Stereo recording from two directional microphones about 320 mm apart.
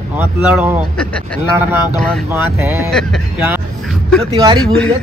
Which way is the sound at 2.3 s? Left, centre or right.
Centre.